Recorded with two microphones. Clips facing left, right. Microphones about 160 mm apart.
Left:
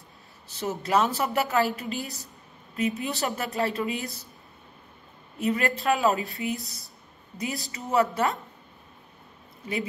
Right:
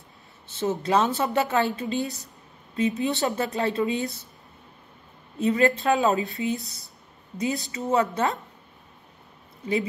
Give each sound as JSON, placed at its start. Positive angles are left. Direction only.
{"t": 0.5, "sound": "speech", "side_deg": -25}
{"t": 5.4, "sound": "speech", "side_deg": -25}